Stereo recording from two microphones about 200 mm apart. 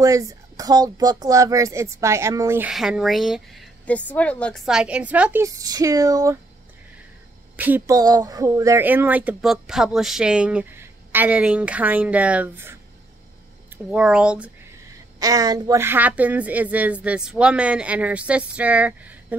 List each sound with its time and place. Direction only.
0.0 s speech: 15° right (ahead or behind)
2.7 s a woman's voice: centre (ahead or behind)
7.5 s speech: 10° right (ahead or behind)
13.8 s a woman's voice: 5° right (ahead or behind)
15.1 s speech: 20° right (ahead or behind)